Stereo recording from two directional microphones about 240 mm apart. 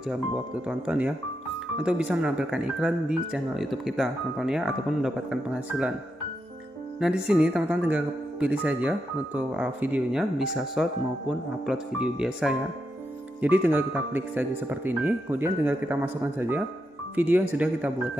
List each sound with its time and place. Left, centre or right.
0.1 s speech: centre
7.0 s speech: centre